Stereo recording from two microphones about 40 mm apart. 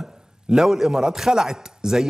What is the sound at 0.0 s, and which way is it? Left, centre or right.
A man's voice, centre.